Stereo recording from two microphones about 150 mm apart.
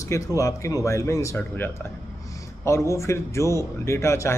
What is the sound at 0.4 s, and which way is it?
Speech, 20° left (ahead or behind).